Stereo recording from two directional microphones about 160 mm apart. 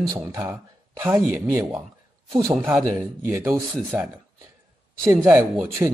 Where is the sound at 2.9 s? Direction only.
20° right (ahead or behind).